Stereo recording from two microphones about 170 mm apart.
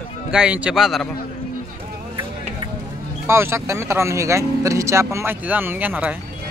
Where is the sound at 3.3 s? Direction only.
15° right (ahead or behind).